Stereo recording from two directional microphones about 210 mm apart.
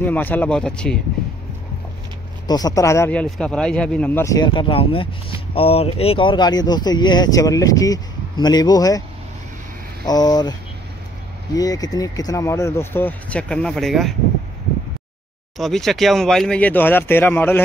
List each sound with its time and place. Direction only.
0.0 s speech: 10° left (ahead or behind)
2.4 s a man's voice: 20° left (ahead or behind)
10.0 s a man's voice: 20° left (ahead or behind)
11.5 s speech: 15° left (ahead or behind); by 14.1 s centre (ahead or behind)
15.5 s speech: centre (ahead or behind)